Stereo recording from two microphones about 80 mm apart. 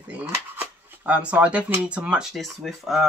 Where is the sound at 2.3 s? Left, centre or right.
Centre.